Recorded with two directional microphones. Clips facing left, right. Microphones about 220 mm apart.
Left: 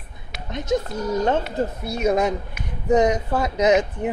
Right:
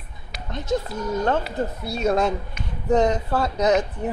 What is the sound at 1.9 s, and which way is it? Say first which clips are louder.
Speech: left 1 dB; 15° left (ahead or behind).